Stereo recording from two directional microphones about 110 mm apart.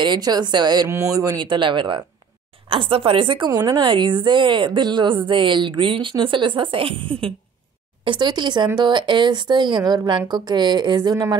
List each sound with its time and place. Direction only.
0.0 s speech: 40° right (ahead or behind)
0.8 s a woman's voice: 25° right (ahead or behind)
3.8 s a woman's voice: 45° right (ahead or behind)